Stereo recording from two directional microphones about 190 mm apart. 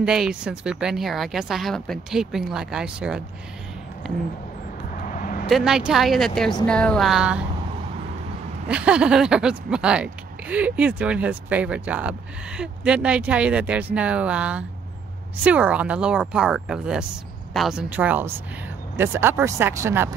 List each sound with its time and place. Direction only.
0.0 s speech: 5° right (ahead or behind)
4.9 s vehicle: 45° left (ahead or behind)
5.5 s speech: 5° right (ahead or behind)
8.6 s speech: 5° right (ahead or behind)